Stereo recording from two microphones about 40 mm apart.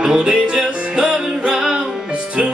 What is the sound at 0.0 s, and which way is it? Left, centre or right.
Music, right.